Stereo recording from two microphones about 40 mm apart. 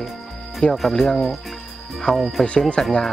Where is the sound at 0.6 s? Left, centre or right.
Left.